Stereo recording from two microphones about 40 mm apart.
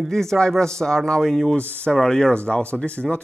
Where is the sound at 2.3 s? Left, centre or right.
Left.